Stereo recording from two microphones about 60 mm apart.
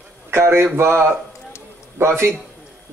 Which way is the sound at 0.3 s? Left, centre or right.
Right.